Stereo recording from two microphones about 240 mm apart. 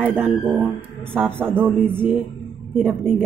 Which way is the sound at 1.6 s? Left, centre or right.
Centre.